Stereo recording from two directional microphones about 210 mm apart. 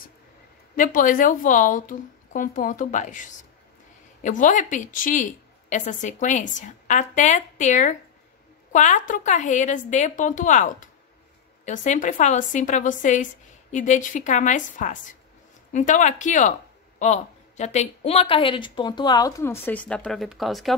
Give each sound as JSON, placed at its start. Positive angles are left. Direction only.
{"t": 0.7, "sound": "a woman's voice", "side_deg": 40}